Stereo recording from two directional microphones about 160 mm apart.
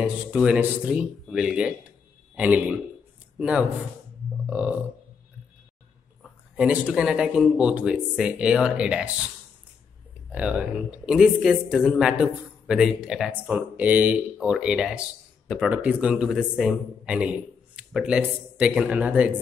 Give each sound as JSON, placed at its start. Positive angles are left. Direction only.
{"t": 0.0, "sound": "a man's voice", "side_deg": -5}
{"t": 6.5, "sound": "speech", "side_deg": -5}
{"t": 10.3, "sound": "speech", "side_deg": -5}